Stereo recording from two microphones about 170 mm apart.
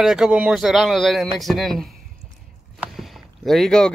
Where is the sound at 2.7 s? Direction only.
Centre (ahead or behind).